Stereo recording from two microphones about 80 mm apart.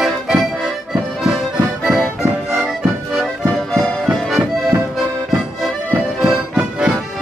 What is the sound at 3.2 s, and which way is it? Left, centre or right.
Music, centre.